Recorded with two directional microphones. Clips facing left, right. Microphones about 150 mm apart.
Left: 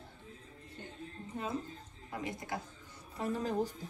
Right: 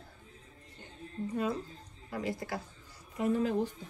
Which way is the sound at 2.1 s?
20° left (ahead or behind).